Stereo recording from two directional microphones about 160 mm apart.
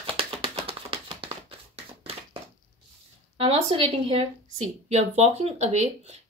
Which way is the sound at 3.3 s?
40° right (ahead or behind).